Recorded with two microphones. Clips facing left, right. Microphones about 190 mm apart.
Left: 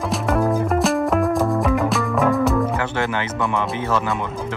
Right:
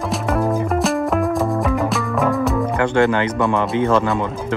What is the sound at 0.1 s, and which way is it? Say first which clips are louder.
Music: even; centre (ahead or behind).